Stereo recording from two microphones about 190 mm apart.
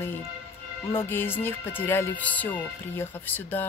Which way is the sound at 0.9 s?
10° left (ahead or behind).